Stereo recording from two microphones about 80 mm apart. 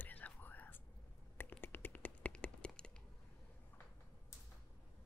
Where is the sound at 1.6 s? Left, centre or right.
Left.